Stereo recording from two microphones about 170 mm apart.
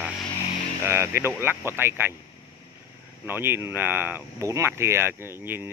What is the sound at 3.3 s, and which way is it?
Speech, 15° right (ahead or behind).